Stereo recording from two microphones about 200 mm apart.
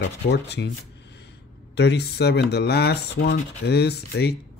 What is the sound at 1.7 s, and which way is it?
Speech, 55° left (ahead or behind).